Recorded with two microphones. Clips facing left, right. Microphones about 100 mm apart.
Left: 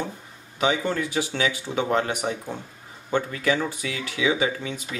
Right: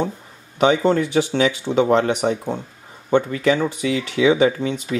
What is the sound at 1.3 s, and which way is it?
Speech, 20° right (ahead or behind).